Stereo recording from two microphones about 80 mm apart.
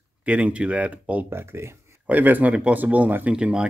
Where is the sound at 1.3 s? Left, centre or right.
Right.